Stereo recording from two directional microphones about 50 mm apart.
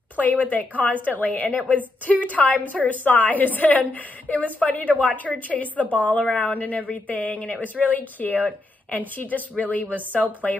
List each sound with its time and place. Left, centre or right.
0.2 s a woman's voice: left